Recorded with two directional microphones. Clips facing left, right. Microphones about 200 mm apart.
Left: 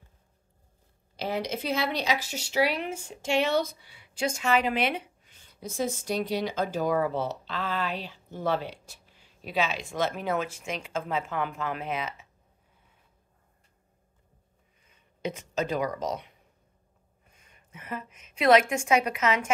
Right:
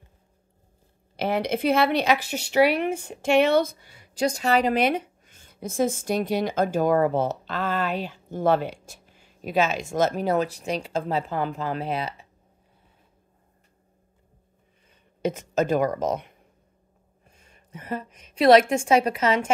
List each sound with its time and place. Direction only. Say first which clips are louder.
1.1 s speech: right 6 dB; 60° right (ahead or behind); by 12.3 s 35° right (ahead or behind)
14.9 s speech: right 7 dB; 45° right (ahead or behind)
17.3 s a woman's voice: right 7 dB; 30° right (ahead or behind)